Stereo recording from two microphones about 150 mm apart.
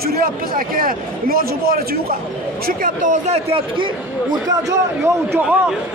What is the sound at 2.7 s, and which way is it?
Speech, 65° right (ahead or behind).